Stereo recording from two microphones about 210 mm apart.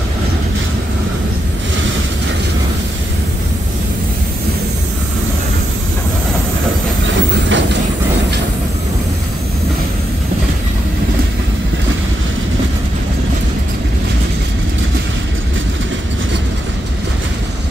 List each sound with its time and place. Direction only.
7.2 s train: 60° right (ahead or behind)